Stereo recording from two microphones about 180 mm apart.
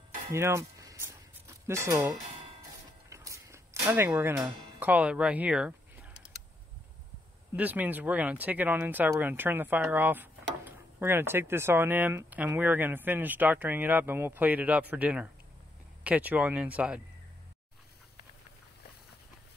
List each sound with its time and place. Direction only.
0.3 s a sound: 15° right (ahead or behind)
4.7 s music: 10° right (ahead or behind)
7.5 s speech: 10° right (ahead or behind)